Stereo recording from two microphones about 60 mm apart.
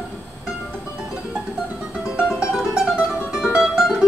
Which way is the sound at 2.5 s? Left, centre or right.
Centre.